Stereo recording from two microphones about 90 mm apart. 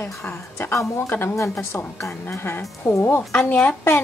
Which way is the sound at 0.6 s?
30° left (ahead or behind).